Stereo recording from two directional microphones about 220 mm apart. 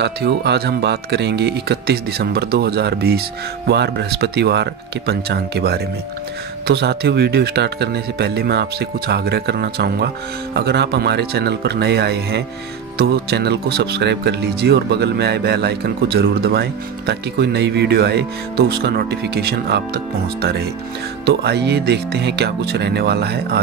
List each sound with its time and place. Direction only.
0.0 s speech: 50° right (ahead or behind)
21.3 s speech: 45° right (ahead or behind)